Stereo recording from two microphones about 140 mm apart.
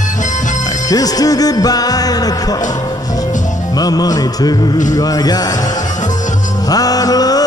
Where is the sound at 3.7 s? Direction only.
25° left (ahead or behind).